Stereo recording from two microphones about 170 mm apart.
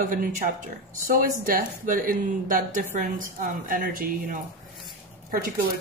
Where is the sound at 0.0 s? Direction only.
55° right (ahead or behind).